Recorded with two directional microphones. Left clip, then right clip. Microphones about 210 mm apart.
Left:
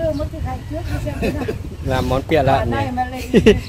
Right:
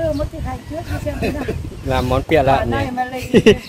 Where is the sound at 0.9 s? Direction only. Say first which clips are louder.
Right 1 dB; centre (ahead or behind).